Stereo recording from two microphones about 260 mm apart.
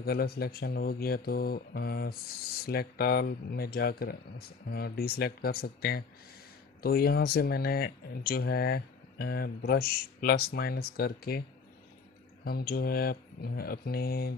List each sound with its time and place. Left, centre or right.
0.0 s speech: left
12.4 s speech: left